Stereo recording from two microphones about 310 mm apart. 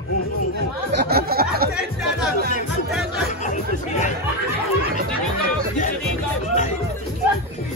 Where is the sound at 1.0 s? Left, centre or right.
Right.